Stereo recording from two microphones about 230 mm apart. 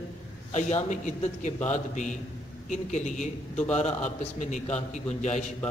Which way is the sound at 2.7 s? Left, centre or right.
Left.